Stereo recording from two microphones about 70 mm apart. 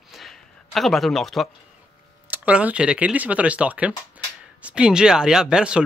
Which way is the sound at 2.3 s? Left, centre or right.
Right.